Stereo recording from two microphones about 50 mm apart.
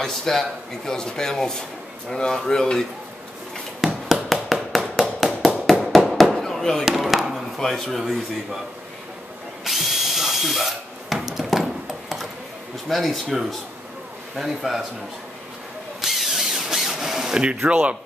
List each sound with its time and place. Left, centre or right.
0.0 s speech: centre
3.8 s a sound: centre
5.7 s hammer: centre
6.4 s fireworks: centre
7.0 s chop: centre
7.5 s speech: centre
9.7 s drill: centre
12.8 s speech: centre
16.0 s drill: centre
17.6 s speech: right